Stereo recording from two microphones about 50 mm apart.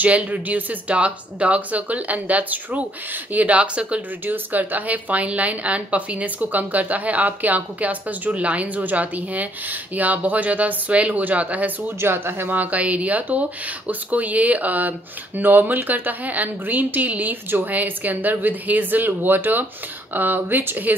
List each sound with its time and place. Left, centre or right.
0.0 s speech: right
4.3 s speech: right
12.0 s speech: right